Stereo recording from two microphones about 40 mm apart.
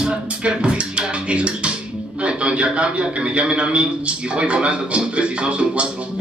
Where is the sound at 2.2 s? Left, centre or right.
Right.